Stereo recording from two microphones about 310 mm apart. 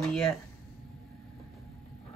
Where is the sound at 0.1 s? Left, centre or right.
Centre.